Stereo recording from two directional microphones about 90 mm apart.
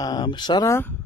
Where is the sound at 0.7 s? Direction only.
25° left (ahead or behind).